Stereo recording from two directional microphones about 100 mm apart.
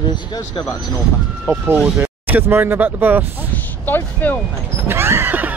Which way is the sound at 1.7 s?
10° right (ahead or behind).